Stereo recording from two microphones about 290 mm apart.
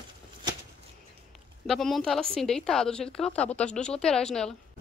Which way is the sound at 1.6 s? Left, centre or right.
Centre.